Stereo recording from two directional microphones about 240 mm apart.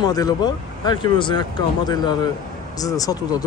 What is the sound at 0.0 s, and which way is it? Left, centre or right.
Speech, centre.